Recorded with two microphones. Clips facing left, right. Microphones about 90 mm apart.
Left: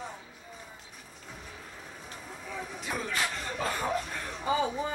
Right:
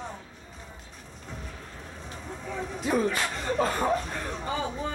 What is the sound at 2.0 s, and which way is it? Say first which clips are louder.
Vehicle: right 6 dB; 5° left (ahead or behind).